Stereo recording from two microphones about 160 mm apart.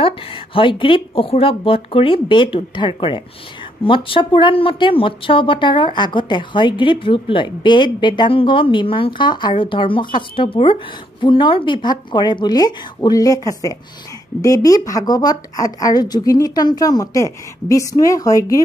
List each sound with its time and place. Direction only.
0.0 s speech: 35° left (ahead or behind)